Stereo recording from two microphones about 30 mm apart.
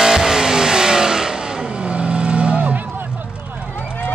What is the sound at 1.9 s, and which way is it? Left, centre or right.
Vehicle, right.